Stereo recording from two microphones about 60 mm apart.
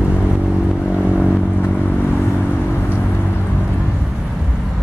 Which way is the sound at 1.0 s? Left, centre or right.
Centre.